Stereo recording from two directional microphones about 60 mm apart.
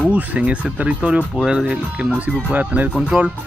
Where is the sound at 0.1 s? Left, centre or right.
Right.